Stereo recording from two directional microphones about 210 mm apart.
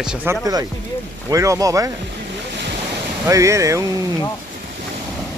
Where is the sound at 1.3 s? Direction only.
15° right (ahead or behind).